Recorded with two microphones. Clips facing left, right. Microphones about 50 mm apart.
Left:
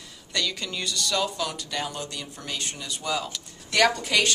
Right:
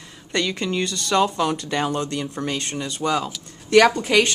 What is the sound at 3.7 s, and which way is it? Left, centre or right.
Speech, right.